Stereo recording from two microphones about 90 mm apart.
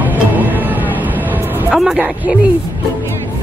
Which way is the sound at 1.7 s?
Centre (ahead or behind).